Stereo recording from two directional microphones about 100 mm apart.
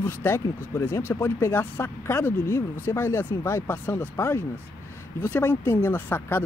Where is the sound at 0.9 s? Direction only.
30° left (ahead or behind).